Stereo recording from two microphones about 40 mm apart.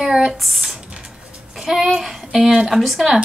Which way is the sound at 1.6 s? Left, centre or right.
Centre.